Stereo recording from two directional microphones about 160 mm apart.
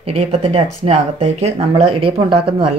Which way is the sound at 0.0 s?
40° right (ahead or behind).